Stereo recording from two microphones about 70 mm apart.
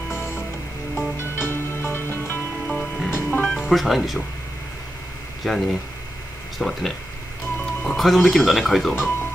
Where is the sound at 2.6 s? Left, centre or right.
Centre.